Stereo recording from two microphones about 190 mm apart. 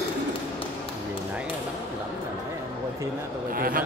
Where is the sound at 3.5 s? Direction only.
50° right (ahead or behind).